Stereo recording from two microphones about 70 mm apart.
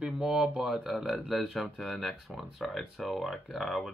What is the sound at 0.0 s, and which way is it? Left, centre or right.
Speech, centre.